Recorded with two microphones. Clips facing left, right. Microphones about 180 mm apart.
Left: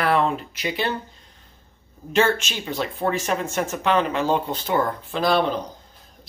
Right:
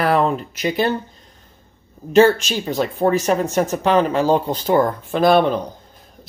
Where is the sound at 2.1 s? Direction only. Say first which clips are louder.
Right 8 dB; 35° right (ahead or behind).